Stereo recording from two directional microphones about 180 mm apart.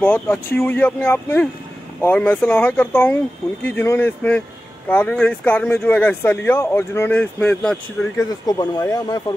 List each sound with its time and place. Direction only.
0.0 s speech: 10° left (ahead or behind)
8.3 s speech: 20° left (ahead or behind)